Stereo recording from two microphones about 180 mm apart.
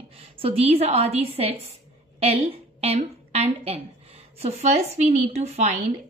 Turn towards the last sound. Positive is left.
turn(degrees=-40)  # may be behind; listen again after turning